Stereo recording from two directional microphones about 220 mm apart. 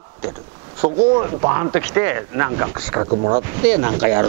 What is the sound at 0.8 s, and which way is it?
Speech, 25° right (ahead or behind).